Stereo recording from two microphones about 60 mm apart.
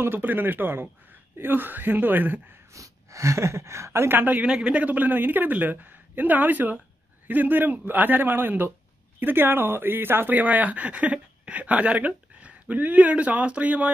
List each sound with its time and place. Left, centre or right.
0.0 s a man's voice: right
2.7 s a woman's voice: right
4.4 s a man's voice: centre
4.8 s a man's voice: right